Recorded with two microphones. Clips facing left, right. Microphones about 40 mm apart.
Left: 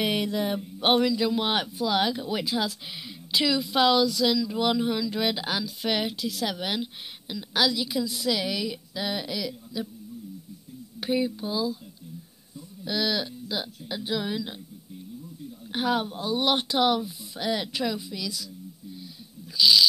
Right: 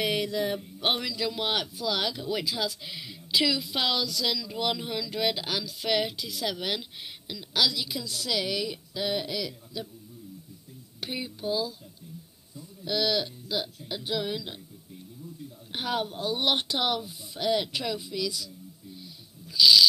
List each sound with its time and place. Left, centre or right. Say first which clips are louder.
0.0 s a woman's voice: left 1 dB; left; by 9.8 s centre
11.0 s speech: left 9 dB; centre
12.8 s speech: even; centre
15.7 s speech: left 4 dB; centre
19.5 s a woman's voice: right 1 dB; centre